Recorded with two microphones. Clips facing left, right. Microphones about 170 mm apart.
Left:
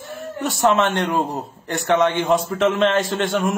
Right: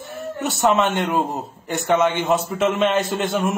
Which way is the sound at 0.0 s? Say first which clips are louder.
Even; centre (ahead or behind).